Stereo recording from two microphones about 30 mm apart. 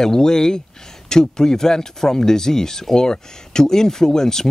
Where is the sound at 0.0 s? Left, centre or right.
Centre.